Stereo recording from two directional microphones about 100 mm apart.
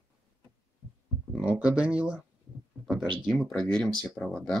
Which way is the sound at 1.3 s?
10° right (ahead or behind).